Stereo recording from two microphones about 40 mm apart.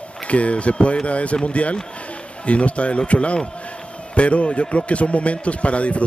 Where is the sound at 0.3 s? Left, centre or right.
Left.